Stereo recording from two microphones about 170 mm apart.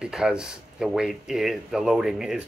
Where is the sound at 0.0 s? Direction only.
5° right (ahead or behind).